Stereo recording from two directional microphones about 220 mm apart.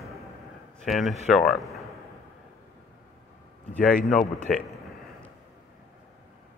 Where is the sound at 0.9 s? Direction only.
Centre (ahead or behind).